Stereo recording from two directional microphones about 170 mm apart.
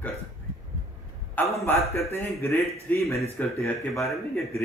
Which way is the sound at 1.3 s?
15° left (ahead or behind).